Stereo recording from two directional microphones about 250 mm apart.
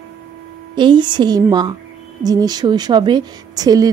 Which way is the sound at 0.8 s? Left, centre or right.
Centre.